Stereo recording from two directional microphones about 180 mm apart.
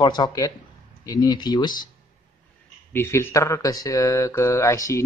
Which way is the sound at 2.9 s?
15° left (ahead or behind).